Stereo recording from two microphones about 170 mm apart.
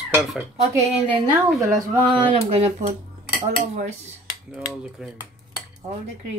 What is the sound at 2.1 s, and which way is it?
Speech, 40° right (ahead or behind).